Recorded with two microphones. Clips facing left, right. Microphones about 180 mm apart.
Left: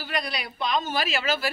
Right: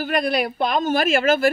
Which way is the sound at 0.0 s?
50° right (ahead or behind).